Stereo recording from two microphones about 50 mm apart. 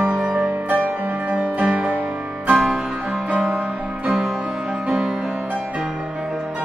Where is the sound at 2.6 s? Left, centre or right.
Centre.